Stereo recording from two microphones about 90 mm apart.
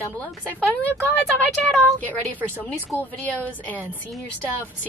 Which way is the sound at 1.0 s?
15° left (ahead or behind).